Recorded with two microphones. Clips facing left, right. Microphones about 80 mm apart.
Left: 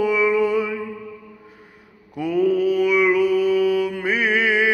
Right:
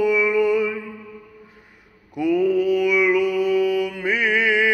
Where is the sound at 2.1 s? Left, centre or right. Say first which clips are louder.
Right 1 dB; left.